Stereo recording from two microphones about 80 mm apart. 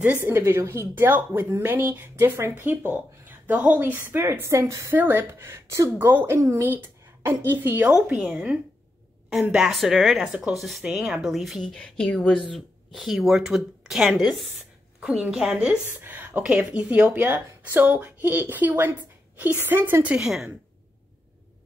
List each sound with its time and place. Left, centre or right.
0.0 s speech: right
0.3 s speech: right
7.9 s a woman's voice: centre
9.7 s speech: centre
11.7 s speech: centre
12.3 s speech: centre
15.0 s a woman's voice: centre
15.9 s a sound: right
16.7 s speech: right
20.2 s speech: centre